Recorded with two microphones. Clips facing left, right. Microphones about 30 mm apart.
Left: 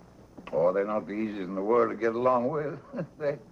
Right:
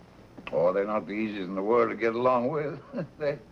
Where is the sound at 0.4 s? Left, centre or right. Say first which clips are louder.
Even; right.